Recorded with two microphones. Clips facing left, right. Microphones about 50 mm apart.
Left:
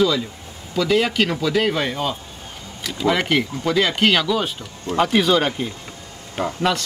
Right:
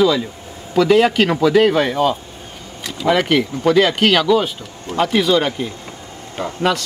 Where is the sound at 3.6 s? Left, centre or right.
Centre.